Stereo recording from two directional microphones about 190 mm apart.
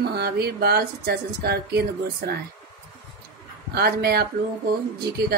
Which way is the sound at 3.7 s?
55° right (ahead or behind).